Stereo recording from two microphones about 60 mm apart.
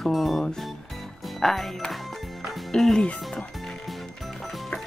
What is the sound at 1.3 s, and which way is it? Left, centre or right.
Music, centre.